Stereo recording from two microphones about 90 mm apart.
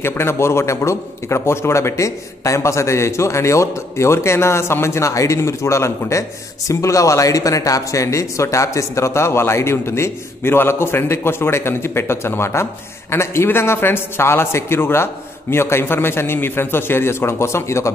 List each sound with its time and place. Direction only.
0.0 s a man's voice: 30° left (ahead or behind)